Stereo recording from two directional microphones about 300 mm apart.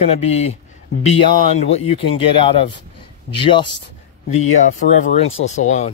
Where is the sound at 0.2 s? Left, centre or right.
Left.